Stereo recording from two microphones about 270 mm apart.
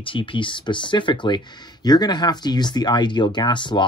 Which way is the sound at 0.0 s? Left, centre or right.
Centre.